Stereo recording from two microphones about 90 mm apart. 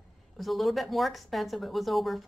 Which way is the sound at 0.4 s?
Centre (ahead or behind).